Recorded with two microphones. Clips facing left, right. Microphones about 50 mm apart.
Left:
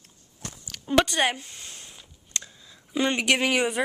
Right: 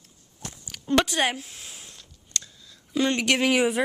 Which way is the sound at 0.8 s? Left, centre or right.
Centre.